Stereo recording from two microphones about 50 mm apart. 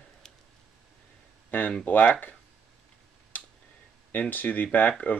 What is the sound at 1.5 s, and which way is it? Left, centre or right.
Speech, left.